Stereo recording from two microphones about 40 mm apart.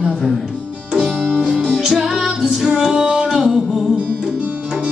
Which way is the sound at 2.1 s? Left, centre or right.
Centre.